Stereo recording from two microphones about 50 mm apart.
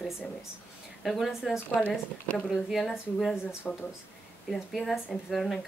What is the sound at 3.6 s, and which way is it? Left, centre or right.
Speech, left.